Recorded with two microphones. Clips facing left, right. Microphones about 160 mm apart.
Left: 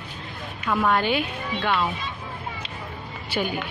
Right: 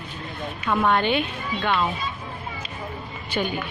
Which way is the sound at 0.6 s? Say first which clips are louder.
Right 1 dB; 5° left (ahead or behind).